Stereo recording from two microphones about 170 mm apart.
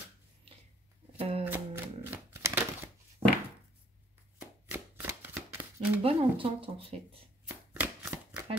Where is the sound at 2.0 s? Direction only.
10° right (ahead or behind).